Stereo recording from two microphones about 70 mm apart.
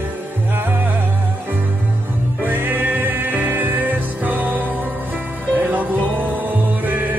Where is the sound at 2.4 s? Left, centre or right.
Right.